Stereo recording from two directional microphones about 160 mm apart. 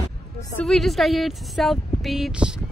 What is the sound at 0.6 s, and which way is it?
Speech, centre (ahead or behind).